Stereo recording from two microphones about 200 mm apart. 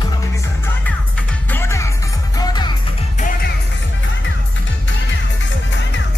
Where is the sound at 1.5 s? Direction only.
15° left (ahead or behind).